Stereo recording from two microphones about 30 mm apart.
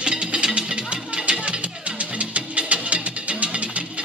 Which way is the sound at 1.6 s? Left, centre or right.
Right.